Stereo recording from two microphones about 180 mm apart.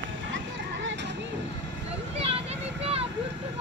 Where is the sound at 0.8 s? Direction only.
80° right.